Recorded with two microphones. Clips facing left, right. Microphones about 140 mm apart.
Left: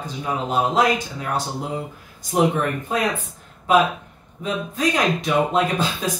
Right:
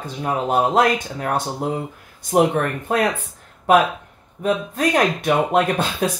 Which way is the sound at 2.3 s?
55° right (ahead or behind).